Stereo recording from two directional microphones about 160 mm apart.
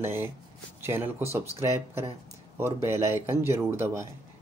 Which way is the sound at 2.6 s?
15° right (ahead or behind).